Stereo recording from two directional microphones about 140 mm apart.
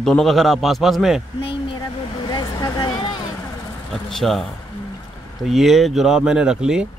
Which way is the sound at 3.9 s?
Centre (ahead or behind).